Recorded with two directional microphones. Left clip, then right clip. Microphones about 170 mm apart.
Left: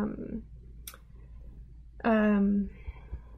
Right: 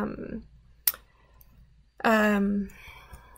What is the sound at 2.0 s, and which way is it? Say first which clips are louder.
Speech: right 4 dB; 15° right (ahead or behind).